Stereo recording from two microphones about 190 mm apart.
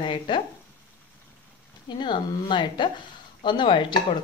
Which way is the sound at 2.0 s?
25° left (ahead or behind).